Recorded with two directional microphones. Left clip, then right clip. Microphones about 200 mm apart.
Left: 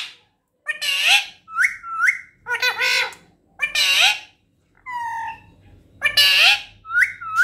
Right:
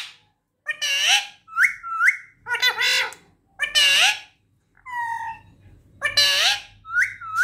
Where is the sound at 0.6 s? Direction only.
10° right (ahead or behind).